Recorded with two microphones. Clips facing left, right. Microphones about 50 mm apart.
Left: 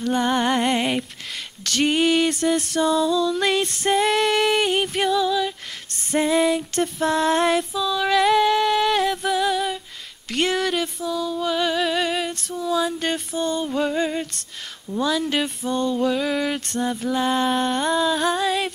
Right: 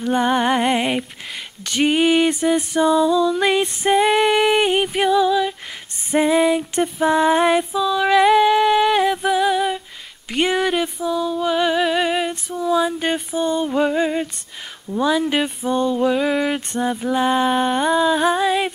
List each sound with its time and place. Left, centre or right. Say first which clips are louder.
0.0 s music: right 3 dB; centre